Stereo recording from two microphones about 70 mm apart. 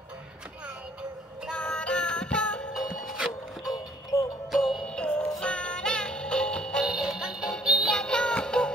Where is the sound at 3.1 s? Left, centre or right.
Centre.